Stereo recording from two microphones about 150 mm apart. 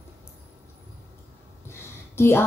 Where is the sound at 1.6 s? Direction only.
15° left (ahead or behind).